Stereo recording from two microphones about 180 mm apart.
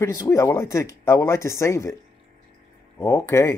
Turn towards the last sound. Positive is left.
turn(degrees=15)  # may be behind; listen again after turning